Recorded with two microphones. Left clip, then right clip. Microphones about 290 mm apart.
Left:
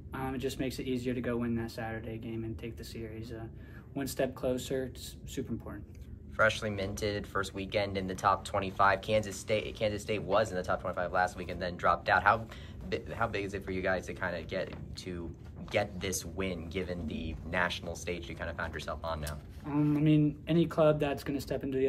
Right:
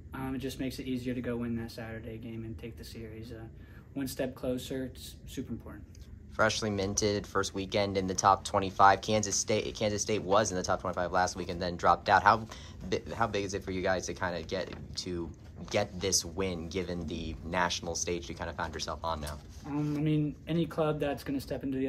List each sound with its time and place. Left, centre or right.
0.1 s speech: centre
6.3 s speech: centre
19.6 s speech: centre